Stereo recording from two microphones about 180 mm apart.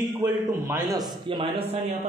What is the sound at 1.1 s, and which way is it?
Speech, 25° right (ahead or behind).